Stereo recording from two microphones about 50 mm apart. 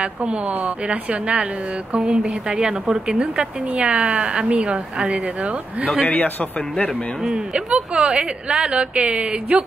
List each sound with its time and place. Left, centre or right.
0.0 s a woman's voice: right
6.0 s a man's voice: left
7.2 s a woman's voice: centre